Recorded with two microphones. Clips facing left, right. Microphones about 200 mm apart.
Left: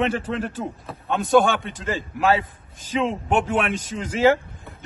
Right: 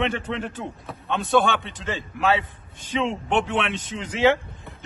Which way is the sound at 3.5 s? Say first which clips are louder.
Left 3 dB; 45° left (ahead or behind).